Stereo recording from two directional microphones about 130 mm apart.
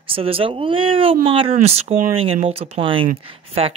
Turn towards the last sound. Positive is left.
turn(degrees=-50)  # may be behind; listen again after turning